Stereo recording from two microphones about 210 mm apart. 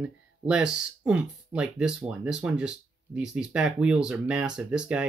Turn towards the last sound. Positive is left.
turn(degrees=-5)  # may be behind; listen again after turning